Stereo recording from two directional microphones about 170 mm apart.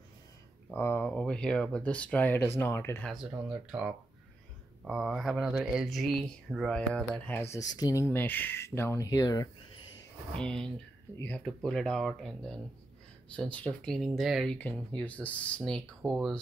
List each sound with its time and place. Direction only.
0.7 s speech: 15° left (ahead or behind)
3.1 s speech: 5° right (ahead or behind)
7.5 s speech: 20° left (ahead or behind)
10.3 s speech: 5° left (ahead or behind)